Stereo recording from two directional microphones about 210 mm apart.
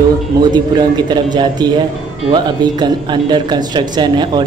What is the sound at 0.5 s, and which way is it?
Speech, 20° right (ahead or behind).